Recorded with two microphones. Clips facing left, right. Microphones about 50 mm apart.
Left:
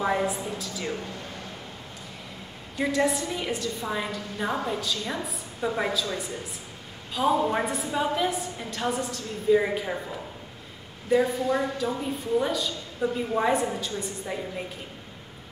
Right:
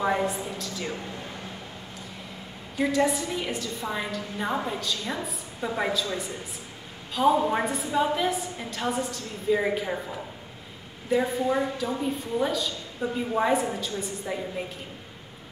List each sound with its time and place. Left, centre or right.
0.0 s a woman's voice: centre
1.0 s a woman's voice: centre
2.8 s a woman's voice: centre
11.8 s a woman's voice: centre